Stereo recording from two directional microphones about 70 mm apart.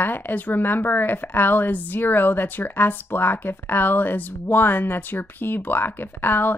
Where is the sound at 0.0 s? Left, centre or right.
Left.